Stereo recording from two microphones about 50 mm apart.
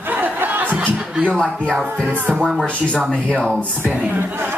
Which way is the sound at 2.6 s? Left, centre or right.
Left.